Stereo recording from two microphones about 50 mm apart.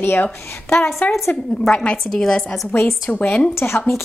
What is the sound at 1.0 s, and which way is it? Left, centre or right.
Speech, left.